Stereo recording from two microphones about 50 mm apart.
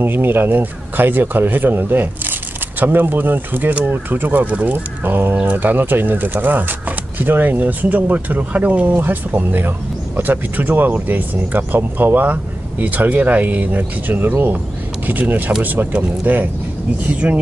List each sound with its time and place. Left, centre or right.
0.0 s speech: right
4.5 s speech: right
5.0 s speech: right